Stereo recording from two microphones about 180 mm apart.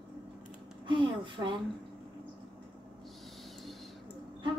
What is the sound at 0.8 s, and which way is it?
Speech, 25° right (ahead or behind).